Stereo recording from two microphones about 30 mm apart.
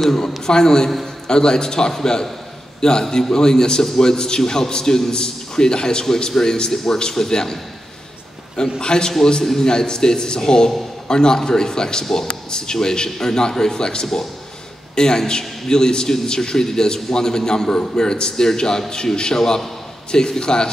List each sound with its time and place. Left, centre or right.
0.5 s a man's voice: left
6.7 s a man's voice: centre
8.7 s a man's voice: left
9.4 s a man's voice: centre
9.7 s a man's voice: left